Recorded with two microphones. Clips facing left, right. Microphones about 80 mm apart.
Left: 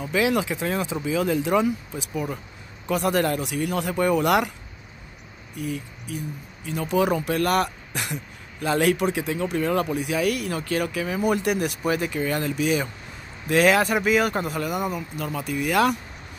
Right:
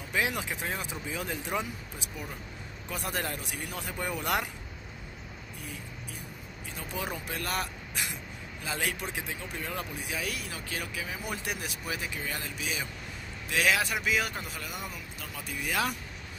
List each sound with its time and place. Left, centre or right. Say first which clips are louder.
0.0 s speech: left 9 dB; left
2.9 s speech: left 12 dB; left
5.6 s speech: left 14 dB; left